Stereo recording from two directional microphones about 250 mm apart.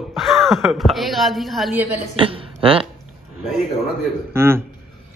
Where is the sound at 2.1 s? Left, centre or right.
Right.